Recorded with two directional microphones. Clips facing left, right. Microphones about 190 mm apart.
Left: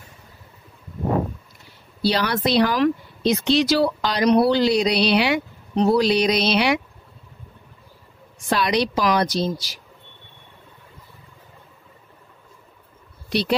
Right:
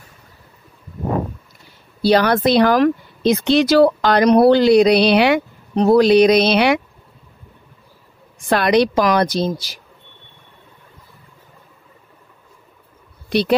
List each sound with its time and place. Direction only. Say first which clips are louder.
2.0 s speech: right 7 dB; 50° right (ahead or behind)
8.5 s speech: right 6 dB; 55° right (ahead or behind)
13.3 s speech: right 5 dB; 55° right (ahead or behind)